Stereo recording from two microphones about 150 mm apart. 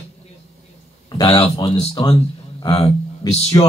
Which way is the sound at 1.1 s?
20° left (ahead or behind).